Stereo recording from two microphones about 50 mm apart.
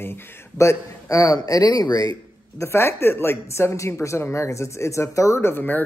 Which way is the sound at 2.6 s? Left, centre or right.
Left.